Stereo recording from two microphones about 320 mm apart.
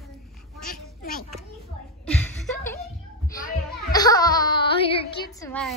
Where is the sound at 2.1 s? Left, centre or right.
Centre.